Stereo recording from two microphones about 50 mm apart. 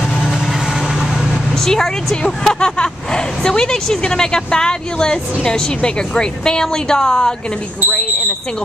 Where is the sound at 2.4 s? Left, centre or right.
Centre.